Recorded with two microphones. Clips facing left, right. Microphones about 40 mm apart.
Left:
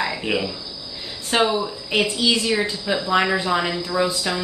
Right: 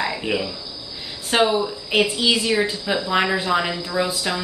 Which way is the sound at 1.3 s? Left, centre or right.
Centre.